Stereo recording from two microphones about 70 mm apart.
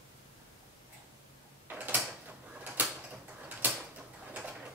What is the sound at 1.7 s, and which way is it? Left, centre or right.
Mechanisms, right.